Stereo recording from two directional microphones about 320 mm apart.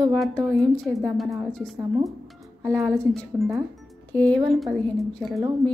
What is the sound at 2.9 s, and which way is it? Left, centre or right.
A woman's voice, centre.